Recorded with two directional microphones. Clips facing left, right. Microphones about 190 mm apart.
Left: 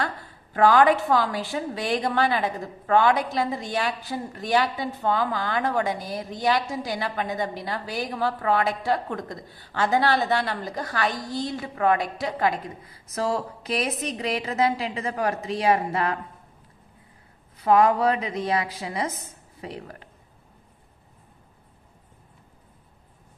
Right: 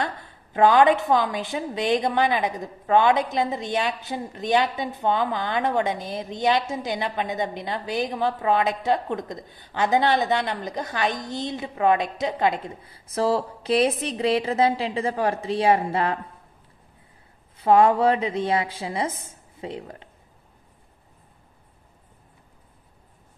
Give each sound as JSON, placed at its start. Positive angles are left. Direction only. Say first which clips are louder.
{"t": 0.0, "sound": "a woman's voice", "louder": "right 1 dB", "side_deg": -20}
{"t": 17.6, "sound": "a woman's voice", "louder": "right 2 dB", "side_deg": -25}